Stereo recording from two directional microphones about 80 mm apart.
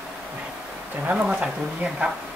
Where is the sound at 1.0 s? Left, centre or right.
Centre.